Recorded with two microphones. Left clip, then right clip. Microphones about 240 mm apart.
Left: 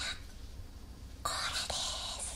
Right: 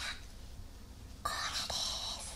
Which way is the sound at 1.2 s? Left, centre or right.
Centre.